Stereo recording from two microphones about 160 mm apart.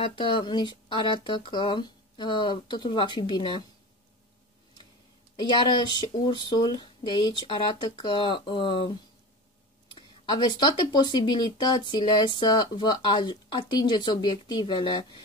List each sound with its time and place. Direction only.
0.0 s speech: 30° left (ahead or behind)
5.3 s speech: 30° left (ahead or behind)
9.9 s speech: 30° left (ahead or behind)